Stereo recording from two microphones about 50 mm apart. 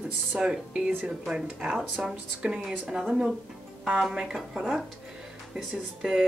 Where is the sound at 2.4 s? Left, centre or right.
Centre.